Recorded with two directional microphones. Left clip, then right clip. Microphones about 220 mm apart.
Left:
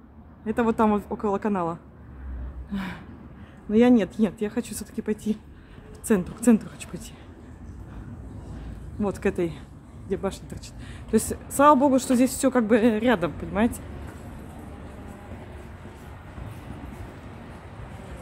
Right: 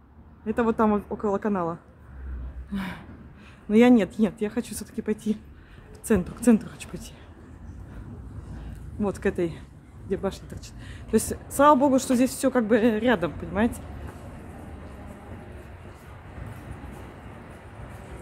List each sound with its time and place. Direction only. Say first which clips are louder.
0.5 s a woman's voice: left 1 dB; centre (ahead or behind)
9.0 s a woman's voice: even; 5° left (ahead or behind)